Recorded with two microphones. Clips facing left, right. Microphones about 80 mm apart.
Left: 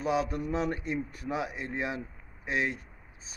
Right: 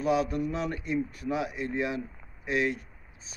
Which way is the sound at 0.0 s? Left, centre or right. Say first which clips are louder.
Right 3 dB; left.